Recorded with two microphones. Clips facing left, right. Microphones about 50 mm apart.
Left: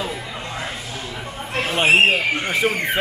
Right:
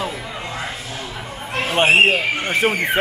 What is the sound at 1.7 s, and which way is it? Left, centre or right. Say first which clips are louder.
Speech: right 1 dB; right.